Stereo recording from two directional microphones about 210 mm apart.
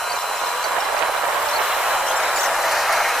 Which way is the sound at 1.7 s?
Centre (ahead or behind).